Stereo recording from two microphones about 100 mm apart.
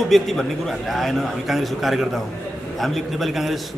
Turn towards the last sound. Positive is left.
turn(degrees=0)  # may be behind; listen again after turning